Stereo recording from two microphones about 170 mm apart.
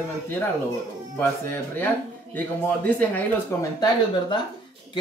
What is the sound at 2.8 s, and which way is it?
Speech, 10° left (ahead or behind).